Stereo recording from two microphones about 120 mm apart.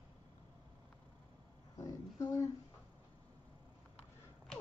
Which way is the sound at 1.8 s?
25° left (ahead or behind).